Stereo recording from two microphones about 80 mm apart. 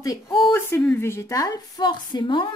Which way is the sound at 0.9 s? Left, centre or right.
Left.